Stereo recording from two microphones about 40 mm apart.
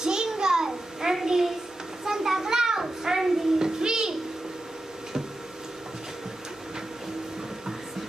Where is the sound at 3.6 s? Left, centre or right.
Centre.